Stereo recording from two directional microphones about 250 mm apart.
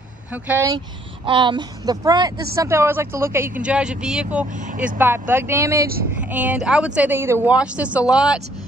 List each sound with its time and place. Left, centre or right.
0.3 s speech: centre
0.7 s speech: centre
4.5 s speech: right
4.7 s speech: centre